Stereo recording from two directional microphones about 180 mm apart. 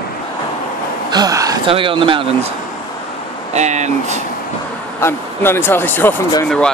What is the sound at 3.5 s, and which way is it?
Speech, 40° right (ahead or behind).